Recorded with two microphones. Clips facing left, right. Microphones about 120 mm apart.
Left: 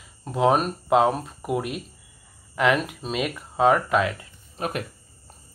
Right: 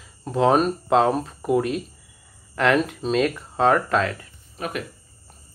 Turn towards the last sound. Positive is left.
turn(degrees=35)  # may be behind; listen again after turning